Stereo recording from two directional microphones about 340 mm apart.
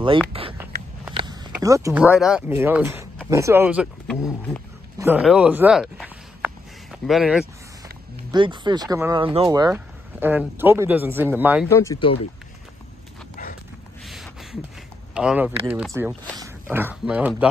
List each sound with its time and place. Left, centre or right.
0.3 s a sound: centre
1.1 s speech: centre
8.3 s speech: centre
11.7 s speech: centre
14.0 s a sound: centre
15.1 s speech: centre